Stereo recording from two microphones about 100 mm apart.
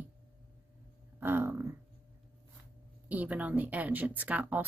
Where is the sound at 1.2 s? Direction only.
20° right (ahead or behind).